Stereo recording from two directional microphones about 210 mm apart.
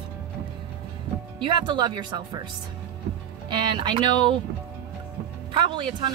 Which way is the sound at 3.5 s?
20° right (ahead or behind).